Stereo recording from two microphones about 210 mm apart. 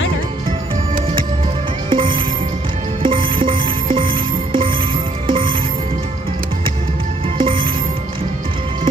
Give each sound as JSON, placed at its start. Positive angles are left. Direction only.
{"t": 1.9, "sound": "music", "side_deg": -25}
{"t": 7.3, "sound": "music", "side_deg": -25}